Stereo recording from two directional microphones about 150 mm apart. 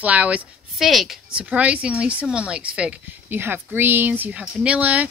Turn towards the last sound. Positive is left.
turn(degrees=-10)  # may be behind; listen again after turning